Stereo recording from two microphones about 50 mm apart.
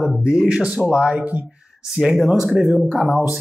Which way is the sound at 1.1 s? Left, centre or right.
Right.